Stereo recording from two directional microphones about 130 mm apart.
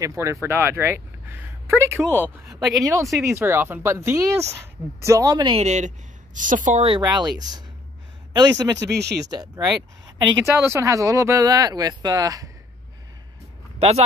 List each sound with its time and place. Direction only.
0.0 s speech: 20° right (ahead or behind)
5.5 s a woman's voice: 60° right (ahead or behind); by 6.8 s 90° right
6.8 s speech: 40° right (ahead or behind)
10.0 s a sound: 35° right (ahead or behind)
10.4 s speech: 20° right (ahead or behind)
13.7 s speech: 50° right (ahead or behind)